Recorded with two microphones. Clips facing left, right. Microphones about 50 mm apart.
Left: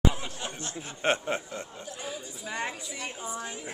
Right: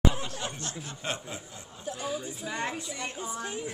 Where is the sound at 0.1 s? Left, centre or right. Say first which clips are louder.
Right 1 dB; centre.